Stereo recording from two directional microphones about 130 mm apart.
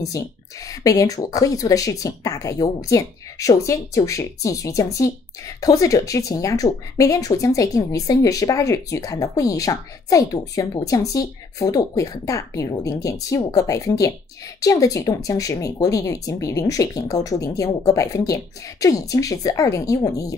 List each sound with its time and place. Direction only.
0.7 s speech: 25° left (ahead or behind)